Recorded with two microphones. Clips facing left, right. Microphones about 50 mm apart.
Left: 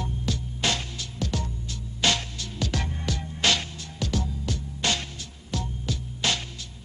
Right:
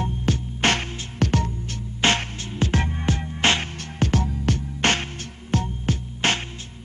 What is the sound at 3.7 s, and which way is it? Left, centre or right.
Music, right.